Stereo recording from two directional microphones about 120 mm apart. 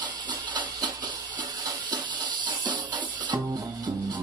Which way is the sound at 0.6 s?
40° right (ahead or behind).